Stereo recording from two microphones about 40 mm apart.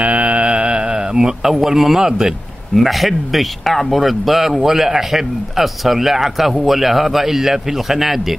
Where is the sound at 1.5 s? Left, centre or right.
Centre.